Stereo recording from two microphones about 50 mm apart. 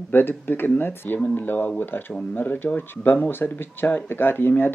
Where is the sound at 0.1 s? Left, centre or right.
Left.